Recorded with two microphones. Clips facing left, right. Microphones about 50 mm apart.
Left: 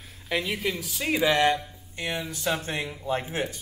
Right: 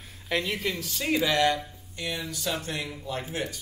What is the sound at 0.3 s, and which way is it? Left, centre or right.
Speech, centre.